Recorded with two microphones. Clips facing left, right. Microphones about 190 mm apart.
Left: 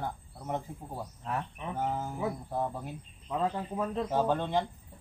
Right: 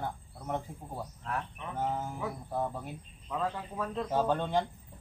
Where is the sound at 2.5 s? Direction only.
10° left (ahead or behind).